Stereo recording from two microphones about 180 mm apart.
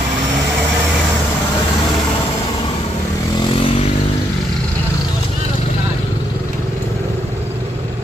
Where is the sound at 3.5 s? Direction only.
30° left (ahead or behind).